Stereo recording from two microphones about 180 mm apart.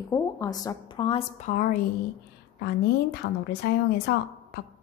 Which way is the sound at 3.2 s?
90° left.